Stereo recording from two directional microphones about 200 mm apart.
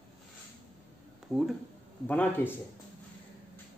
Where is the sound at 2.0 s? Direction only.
10° left (ahead or behind).